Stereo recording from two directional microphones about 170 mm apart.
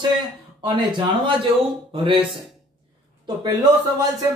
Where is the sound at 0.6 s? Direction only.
30° right (ahead or behind).